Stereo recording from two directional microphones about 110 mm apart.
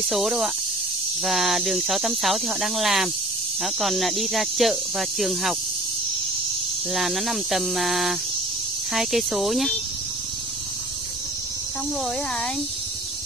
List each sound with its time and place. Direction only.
0.0 s speech: centre (ahead or behind)
6.9 s speech: centre (ahead or behind)